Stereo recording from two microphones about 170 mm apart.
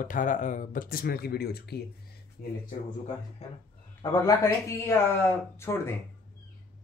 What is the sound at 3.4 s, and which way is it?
Speech, 35° left (ahead or behind).